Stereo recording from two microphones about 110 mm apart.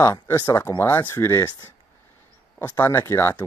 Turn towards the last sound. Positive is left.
turn(degrees=25)  # may be behind; listen again after turning